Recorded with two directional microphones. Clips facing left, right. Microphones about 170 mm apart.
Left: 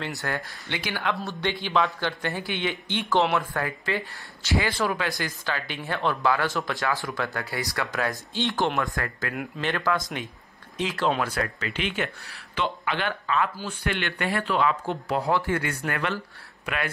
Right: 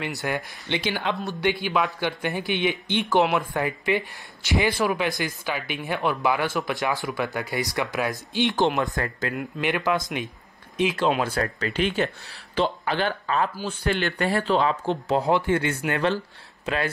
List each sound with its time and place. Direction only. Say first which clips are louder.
0.0 s speech: right 3 dB; 15° right (ahead or behind)
9.6 s speech: right 2 dB; 15° right (ahead or behind); by 16.9 s 30° right (ahead or behind)